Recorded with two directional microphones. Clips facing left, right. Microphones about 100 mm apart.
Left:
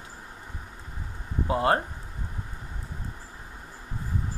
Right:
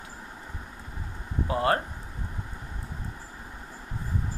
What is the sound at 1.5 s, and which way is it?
Speech, 25° left (ahead or behind).